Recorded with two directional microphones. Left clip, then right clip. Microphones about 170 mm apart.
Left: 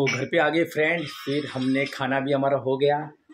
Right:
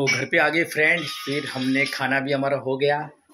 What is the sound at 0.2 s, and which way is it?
Speech, 15° left (ahead or behind).